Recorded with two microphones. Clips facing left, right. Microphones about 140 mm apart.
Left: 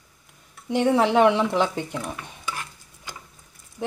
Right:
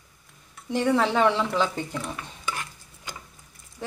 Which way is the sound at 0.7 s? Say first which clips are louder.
Left 3 dB; 15° left (ahead or behind).